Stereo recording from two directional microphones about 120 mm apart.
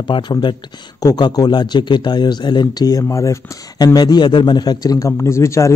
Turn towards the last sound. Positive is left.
turn(degrees=25)  # may be behind; listen again after turning